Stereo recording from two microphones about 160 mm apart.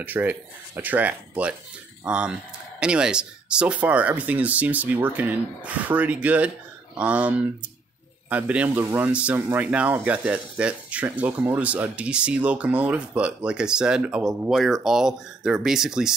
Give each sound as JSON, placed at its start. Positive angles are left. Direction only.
{"t": 0.0, "sound": "speech", "side_deg": -10}